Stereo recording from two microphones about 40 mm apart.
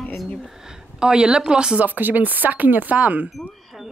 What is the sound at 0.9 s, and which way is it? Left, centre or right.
Speech, centre.